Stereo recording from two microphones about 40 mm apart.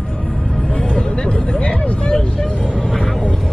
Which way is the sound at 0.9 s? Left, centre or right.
Left.